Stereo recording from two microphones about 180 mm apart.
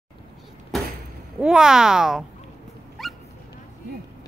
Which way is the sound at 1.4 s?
5° right (ahead or behind).